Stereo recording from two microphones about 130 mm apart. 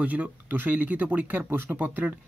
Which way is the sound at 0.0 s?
10° right (ahead or behind).